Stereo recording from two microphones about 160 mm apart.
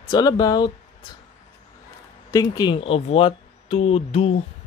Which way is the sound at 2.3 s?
25° left (ahead or behind).